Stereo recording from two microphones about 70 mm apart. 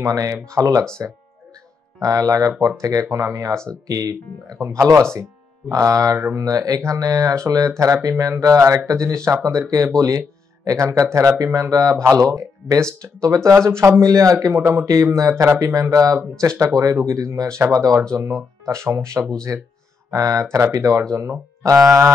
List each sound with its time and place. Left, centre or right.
0.0 s speech: right
2.0 s speech: right
11.0 s speech: right
13.7 s speech: right
18.7 s speech: right
20.1 s speech: right